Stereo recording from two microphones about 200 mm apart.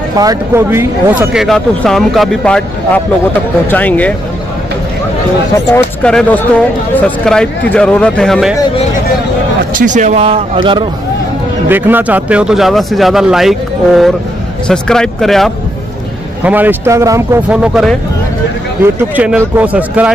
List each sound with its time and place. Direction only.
0.1 s a man's voice: 20° right (ahead or behind)
1.4 s speech: centre (ahead or behind)
5.7 s speech: 5° left (ahead or behind)
9.8 s speech: 40° right (ahead or behind)
11.7 s speech: 10° right (ahead or behind)
16.4 s a man's voice: 10° right (ahead or behind)
18.9 s a man's voice: 5° right (ahead or behind)